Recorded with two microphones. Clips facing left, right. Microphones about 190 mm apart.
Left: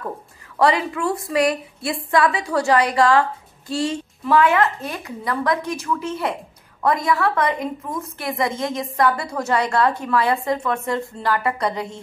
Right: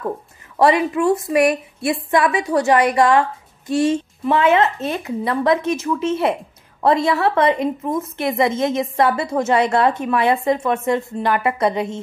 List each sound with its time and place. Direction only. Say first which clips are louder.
0.6 s a woman's voice: right 4 dB; 20° right (ahead or behind)